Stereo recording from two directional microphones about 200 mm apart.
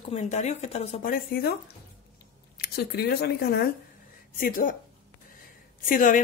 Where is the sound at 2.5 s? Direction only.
55° left (ahead or behind).